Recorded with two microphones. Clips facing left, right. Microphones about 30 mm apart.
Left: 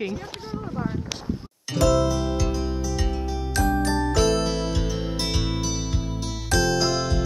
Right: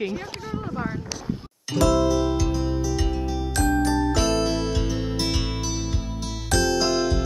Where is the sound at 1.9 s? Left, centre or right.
Centre.